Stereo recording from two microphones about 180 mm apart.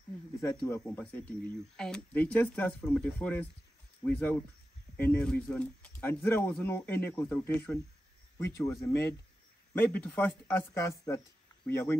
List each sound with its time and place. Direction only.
0.6 s speech: 10° left (ahead or behind)